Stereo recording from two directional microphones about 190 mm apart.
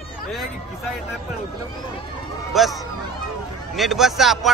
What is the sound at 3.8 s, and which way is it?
Speech, centre (ahead or behind).